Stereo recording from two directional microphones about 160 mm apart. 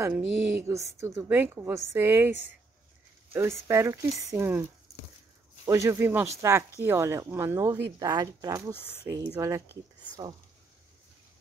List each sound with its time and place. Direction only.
0.0 s a woman's voice: 15° right (ahead or behind)
3.3 s a woman's voice: 15° right (ahead or behind)
5.7 s a woman's voice: 15° right (ahead or behind)